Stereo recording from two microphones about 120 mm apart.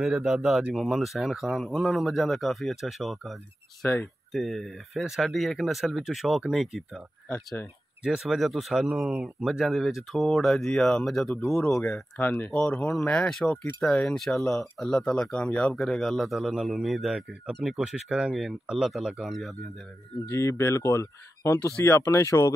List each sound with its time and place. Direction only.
0.0 s speech: 5° right (ahead or behind)
3.8 s speech: 20° left (ahead or behind)
4.3 s speech: centre (ahead or behind)
8.0 s speech: 5° right (ahead or behind)
11.8 s speech: 15° left (ahead or behind)
20.2 s speech: 25° left (ahead or behind)